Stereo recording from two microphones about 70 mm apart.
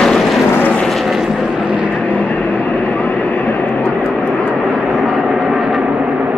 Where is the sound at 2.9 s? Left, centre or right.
Left.